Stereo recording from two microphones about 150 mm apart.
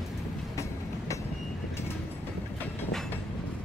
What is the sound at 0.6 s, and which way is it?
Train, 20° left (ahead or behind).